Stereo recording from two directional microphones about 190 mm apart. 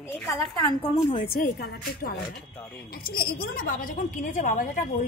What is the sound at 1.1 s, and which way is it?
A woman's voice, 50° left (ahead or behind).